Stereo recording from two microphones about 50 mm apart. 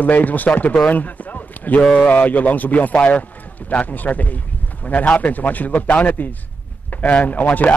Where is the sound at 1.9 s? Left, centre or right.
Left.